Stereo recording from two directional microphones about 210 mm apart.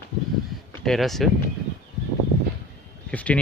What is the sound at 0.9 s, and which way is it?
Speech, centre (ahead or behind).